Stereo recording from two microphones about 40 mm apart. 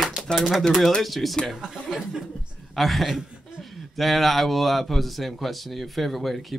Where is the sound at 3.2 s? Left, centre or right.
Centre.